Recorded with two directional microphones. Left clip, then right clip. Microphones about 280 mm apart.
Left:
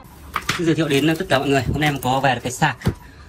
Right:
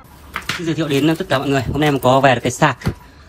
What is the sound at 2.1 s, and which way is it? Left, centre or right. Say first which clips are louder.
Speech: right 8 dB; right.